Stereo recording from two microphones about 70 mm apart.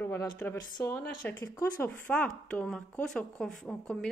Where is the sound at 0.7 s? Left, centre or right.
Left.